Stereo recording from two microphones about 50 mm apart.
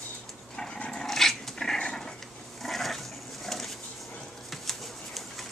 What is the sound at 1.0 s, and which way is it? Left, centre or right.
Dog, centre.